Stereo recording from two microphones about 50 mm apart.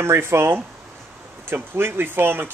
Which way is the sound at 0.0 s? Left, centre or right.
Right.